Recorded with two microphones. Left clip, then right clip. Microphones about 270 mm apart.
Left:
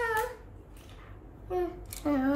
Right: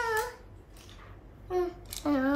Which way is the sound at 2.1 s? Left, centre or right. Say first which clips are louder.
Even; centre.